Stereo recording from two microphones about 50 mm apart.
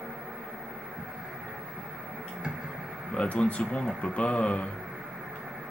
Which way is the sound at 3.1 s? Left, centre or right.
Left.